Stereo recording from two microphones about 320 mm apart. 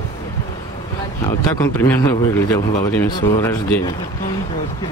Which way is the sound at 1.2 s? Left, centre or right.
Centre.